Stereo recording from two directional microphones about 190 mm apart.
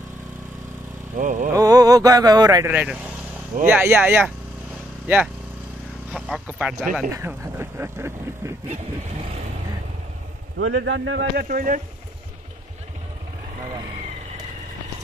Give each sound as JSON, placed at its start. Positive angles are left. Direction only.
{"t": 1.1, "sound": "speech", "side_deg": -45}
{"t": 1.5, "sound": "mantra", "side_deg": -20}
{"t": 2.7, "sound": "speech", "side_deg": -10}
{"t": 10.6, "sound": "speech", "side_deg": -70}
{"t": 11.4, "sound": "speech", "side_deg": -45}